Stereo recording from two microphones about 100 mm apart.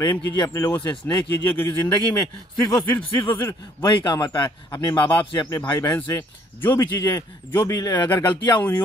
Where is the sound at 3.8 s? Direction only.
45° left (ahead or behind).